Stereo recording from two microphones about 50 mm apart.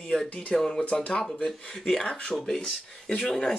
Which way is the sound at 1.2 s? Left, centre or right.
Centre.